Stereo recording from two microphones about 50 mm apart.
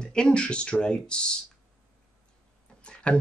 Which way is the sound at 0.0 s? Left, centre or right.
Centre.